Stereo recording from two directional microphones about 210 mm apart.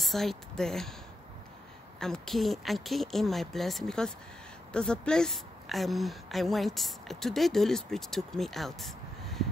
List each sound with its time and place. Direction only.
0.0 s a woman's voice: centre (ahead or behind)
2.0 s a woman's voice: centre (ahead or behind)